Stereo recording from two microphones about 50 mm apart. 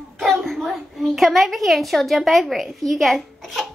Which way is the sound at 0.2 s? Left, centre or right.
Centre.